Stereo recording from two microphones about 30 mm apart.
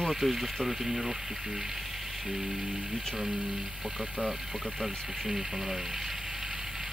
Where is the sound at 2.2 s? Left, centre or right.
Centre.